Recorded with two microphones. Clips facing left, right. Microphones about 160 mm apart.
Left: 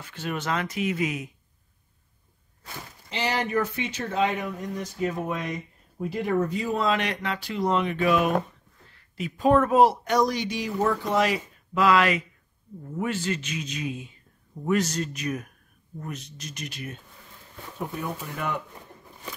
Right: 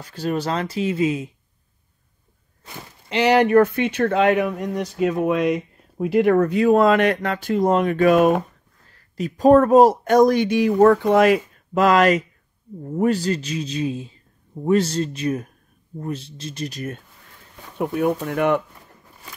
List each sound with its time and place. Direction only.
0.0 s speech: 35° right (ahead or behind)
3.1 s speech: 70° right (ahead or behind); by 16.9 s 40° right (ahead or behind)
17.7 s speech: 65° right (ahead or behind)